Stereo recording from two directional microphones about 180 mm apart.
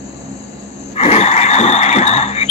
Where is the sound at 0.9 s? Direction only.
40° left (ahead or behind).